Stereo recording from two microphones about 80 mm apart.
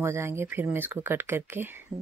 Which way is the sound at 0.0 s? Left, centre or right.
Right.